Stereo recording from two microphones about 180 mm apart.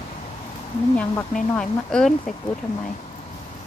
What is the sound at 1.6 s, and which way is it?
Speech, 5° left (ahead or behind).